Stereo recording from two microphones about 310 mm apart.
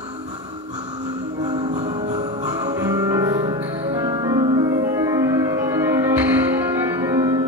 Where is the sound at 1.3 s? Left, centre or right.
Centre.